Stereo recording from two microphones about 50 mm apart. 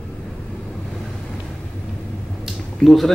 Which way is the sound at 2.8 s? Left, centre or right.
Centre.